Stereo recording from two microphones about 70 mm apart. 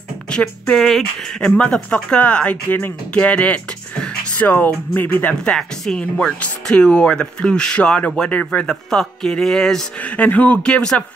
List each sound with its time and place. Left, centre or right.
0.3 s speech: centre
0.7 s speech: centre
1.9 s speech: centre
5.3 s speech: centre
8.6 s speech: centre
9.9 s speech: centre